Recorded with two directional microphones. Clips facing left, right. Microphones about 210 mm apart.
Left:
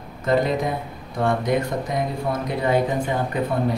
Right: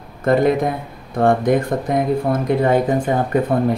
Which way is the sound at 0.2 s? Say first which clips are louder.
Right 5 dB; 55° right (ahead or behind).